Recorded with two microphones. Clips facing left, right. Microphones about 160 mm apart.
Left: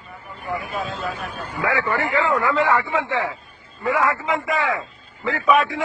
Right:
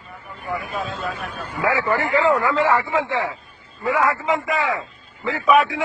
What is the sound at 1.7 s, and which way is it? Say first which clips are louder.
Speech: right 2 dB; 30° right (ahead or behind).